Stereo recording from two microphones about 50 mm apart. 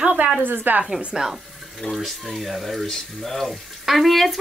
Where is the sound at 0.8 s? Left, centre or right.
Centre.